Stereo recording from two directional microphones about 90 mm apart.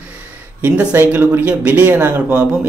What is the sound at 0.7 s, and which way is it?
Speech, 25° right (ahead or behind).